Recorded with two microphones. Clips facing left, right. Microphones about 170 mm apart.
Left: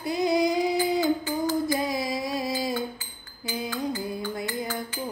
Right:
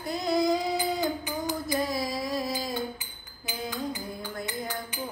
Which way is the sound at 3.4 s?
20° right (ahead or behind).